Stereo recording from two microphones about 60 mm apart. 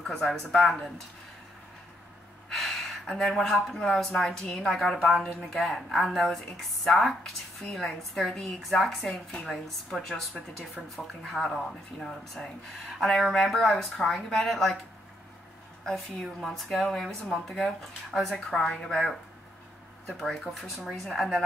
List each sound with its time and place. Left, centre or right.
0.0 s a woman's voice: centre
2.5 s a sound: centre
3.6 s a woman's voice: centre
9.0 s speech: centre
9.4 s a woman's voice: centre
15.8 s a woman's voice: centre